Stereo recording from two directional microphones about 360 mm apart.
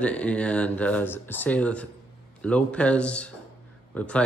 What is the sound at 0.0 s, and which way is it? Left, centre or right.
Speech, centre.